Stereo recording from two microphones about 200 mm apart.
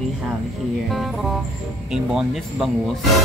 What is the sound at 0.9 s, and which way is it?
Speech, centre (ahead or behind).